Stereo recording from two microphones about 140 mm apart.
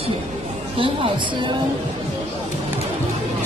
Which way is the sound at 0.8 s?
35° right (ahead or behind).